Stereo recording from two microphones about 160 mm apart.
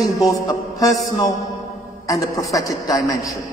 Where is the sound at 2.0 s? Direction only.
20° left (ahead or behind).